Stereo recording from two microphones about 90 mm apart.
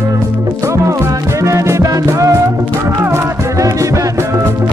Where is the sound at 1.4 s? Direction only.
35° right (ahead or behind).